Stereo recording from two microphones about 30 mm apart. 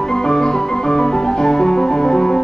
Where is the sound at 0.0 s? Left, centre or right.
Centre.